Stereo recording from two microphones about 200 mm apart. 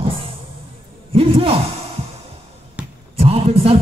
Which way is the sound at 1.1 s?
25° right (ahead or behind).